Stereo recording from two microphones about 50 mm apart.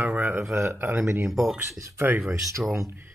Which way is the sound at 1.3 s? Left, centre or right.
Centre.